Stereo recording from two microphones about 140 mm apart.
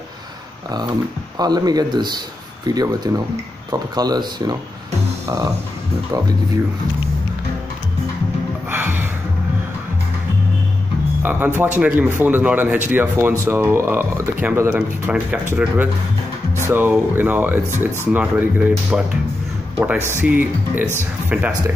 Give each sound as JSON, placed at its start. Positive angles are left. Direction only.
{"t": 1.4, "sound": "speech", "side_deg": -30}
{"t": 8.6, "sound": "music", "side_deg": -15}
{"t": 11.2, "sound": "speech", "side_deg": -15}